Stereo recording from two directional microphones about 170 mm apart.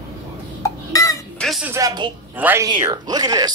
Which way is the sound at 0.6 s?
20° left (ahead or behind).